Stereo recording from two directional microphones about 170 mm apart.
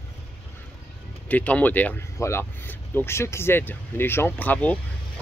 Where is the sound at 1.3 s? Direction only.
10° left (ahead or behind).